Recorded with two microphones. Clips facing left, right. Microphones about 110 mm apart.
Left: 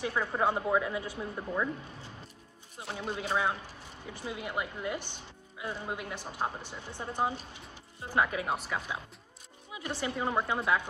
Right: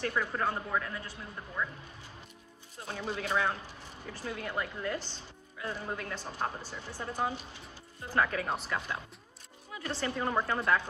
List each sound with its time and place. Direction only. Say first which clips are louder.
0.0 s speech: left 2 dB; 15° left (ahead or behind)
2.8 s speech: even; 15° left (ahead or behind)